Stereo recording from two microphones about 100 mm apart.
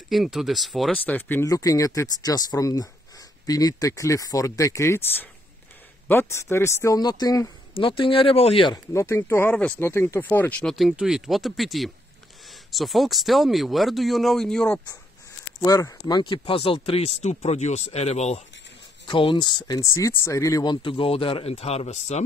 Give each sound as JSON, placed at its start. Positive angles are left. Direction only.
{"t": 0.1, "sound": "speech", "side_deg": 0}
{"t": 0.9, "sound": "speech", "side_deg": 20}
{"t": 1.4, "sound": "speech", "side_deg": 35}
{"t": 7.0, "sound": "speech", "side_deg": 40}
{"t": 7.7, "sound": "speech", "side_deg": 65}
{"t": 8.7, "sound": "speech", "side_deg": 30}
{"t": 10.6, "sound": "speech", "side_deg": 0}
{"t": 15.6, "sound": "speech", "side_deg": 35}
{"t": 19.0, "sound": "speech", "side_deg": 55}
{"t": 19.8, "sound": "speech", "side_deg": 30}
{"t": 20.6, "sound": "speech", "side_deg": 50}